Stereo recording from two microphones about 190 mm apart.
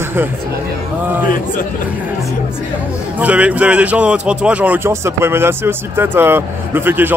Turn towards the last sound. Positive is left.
turn(degrees=-10)  # may be behind; listen again after turning